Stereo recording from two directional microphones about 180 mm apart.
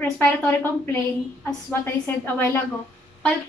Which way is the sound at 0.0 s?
10° left (ahead or behind).